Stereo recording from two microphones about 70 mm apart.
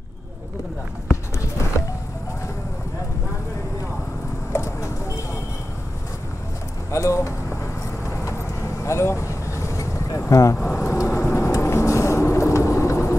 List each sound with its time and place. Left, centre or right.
4.5 s vehicle: left
6.9 s speech: left
8.8 s vehicle: left
10.6 s vehicle: left